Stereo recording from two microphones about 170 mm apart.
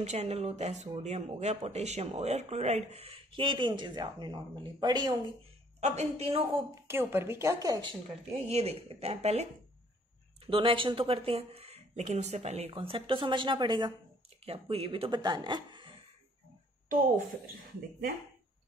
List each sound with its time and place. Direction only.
0.0 s speech: 40° right (ahead or behind); by 5.3 s 25° right (ahead or behind)
5.8 s speech: 40° right (ahead or behind)
6.7 s a woman's voice: 15° right (ahead or behind)
8.3 s speech: 40° right (ahead or behind)